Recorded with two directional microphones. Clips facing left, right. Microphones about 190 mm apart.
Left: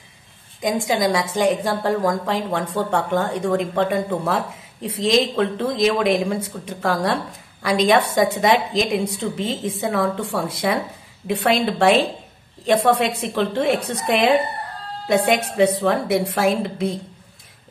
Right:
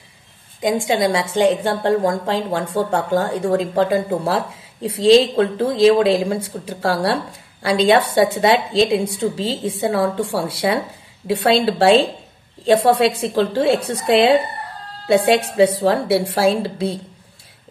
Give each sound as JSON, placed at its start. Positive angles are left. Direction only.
{"t": 0.6, "sound": "a woman's voice", "side_deg": -30}